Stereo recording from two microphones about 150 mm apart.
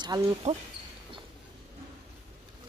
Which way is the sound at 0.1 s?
25° right (ahead or behind).